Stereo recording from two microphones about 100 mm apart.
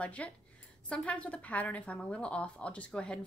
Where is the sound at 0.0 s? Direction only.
15° left (ahead or behind).